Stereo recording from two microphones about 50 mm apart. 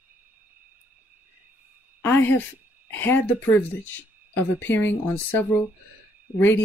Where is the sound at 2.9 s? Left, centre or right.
Left.